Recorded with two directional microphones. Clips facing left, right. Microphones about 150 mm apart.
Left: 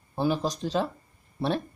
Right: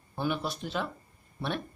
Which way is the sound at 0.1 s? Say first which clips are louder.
Left 5 dB; 30° left (ahead or behind).